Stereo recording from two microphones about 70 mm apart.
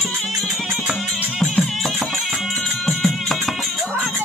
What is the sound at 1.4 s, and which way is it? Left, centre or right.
Music, centre.